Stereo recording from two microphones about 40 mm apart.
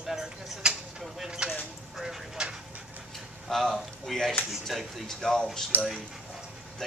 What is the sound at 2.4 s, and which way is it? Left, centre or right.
Speech, centre.